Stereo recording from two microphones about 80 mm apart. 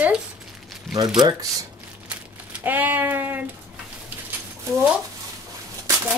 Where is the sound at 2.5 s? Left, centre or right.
Right.